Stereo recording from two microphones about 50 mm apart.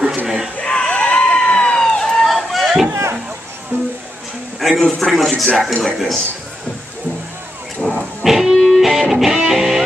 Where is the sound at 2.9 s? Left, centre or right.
Right.